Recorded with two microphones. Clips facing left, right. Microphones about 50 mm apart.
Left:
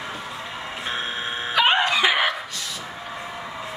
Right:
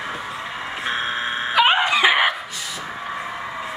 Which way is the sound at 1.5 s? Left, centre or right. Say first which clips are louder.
Right 2 dB; centre.